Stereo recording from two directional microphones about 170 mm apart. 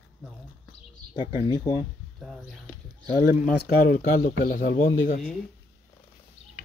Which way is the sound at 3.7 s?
60° left (ahead or behind).